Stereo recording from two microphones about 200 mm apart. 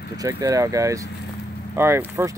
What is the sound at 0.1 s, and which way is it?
Speech, 15° right (ahead or behind).